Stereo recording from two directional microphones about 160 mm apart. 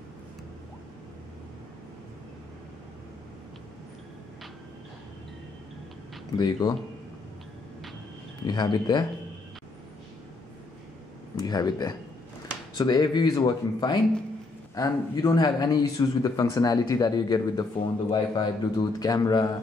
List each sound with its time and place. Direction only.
6.3 s speech: 25° left (ahead or behind)
8.5 s speech: 25° left (ahead or behind)
11.3 s speech: 25° left (ahead or behind)